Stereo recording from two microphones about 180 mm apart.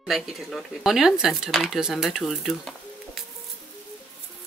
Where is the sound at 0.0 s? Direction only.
Centre (ahead or behind).